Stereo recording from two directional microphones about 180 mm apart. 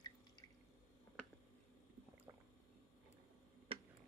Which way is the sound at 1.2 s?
5° left (ahead or behind).